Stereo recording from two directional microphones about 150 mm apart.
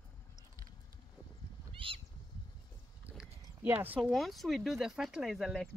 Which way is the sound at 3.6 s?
15° right (ahead or behind).